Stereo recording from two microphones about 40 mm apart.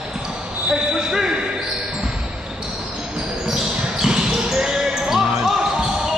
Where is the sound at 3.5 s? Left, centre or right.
Centre.